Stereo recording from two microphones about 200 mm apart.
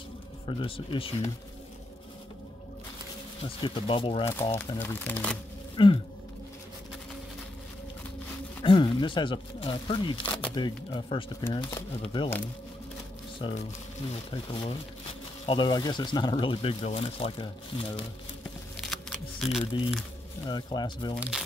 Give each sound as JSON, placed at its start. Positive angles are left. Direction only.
{"t": 0.5, "sound": "speech", "side_deg": 25}
{"t": 3.4, "sound": "speech", "side_deg": 25}
{"t": 4.3, "sound": "speech", "side_deg": 10}
{"t": 5.8, "sound": "speech", "side_deg": 25}
{"t": 8.6, "sound": "speech", "side_deg": 25}
{"t": 13.4, "sound": "speech", "side_deg": 25}
{"t": 18.9, "sound": "music", "side_deg": 0}
{"t": 20.4, "sound": "speech", "side_deg": 20}
{"t": 21.2, "sound": "speech", "side_deg": 0}